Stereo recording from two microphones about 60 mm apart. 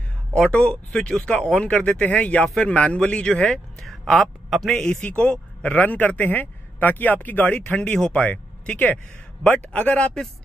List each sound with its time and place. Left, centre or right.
0.3 s a man's voice: centre
4.7 s speech: left